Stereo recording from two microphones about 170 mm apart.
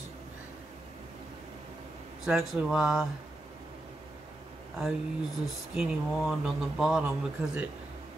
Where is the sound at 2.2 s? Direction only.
Centre (ahead or behind).